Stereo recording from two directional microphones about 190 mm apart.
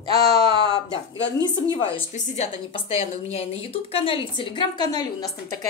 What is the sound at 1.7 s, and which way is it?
A woman's voice, 25° left (ahead or behind).